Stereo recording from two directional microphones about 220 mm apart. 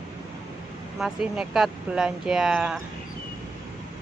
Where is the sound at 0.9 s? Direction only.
5° right (ahead or behind).